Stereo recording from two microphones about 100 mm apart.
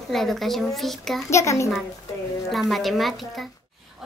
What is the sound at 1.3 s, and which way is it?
Speech, 30° left (ahead or behind).